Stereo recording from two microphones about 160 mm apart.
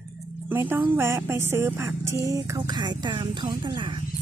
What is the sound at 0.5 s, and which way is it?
Speech, 10° right (ahead or behind).